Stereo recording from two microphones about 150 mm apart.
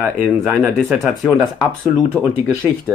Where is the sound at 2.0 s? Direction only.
15° right (ahead or behind).